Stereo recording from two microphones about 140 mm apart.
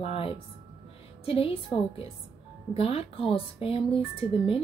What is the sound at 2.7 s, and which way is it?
A woman's voice, 45° left (ahead or behind).